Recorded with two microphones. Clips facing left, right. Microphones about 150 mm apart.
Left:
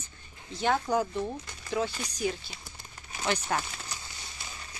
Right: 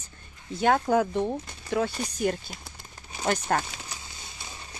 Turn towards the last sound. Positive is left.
turn(degrees=-50)  # may be behind; listen again after turning